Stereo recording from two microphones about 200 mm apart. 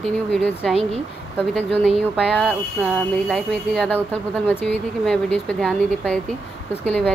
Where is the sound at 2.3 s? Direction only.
5° left (ahead or behind).